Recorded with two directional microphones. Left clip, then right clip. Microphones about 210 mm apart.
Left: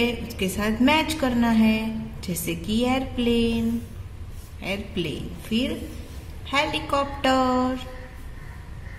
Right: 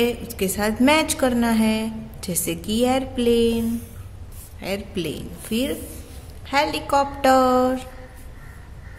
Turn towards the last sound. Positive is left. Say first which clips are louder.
# right 5 dB
turn(degrees=-25)  # may be behind; listen again after turning